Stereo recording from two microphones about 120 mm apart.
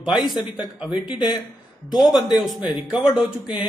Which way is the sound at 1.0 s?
40° left (ahead or behind).